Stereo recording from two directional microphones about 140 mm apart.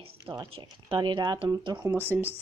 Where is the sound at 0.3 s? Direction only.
35° right (ahead or behind).